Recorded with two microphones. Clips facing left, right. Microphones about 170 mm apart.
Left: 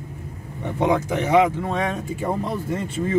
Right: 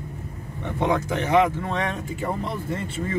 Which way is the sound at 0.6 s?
15° left (ahead or behind).